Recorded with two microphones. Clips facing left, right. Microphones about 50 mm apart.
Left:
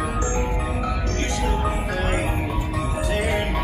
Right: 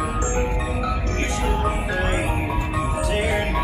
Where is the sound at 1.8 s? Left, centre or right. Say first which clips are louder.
Right 1 dB; right.